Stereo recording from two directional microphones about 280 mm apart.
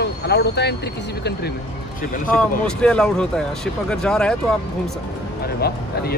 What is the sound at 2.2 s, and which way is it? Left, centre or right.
Speech, centre.